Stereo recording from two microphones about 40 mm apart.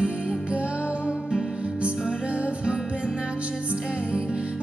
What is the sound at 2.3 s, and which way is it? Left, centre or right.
Music, right.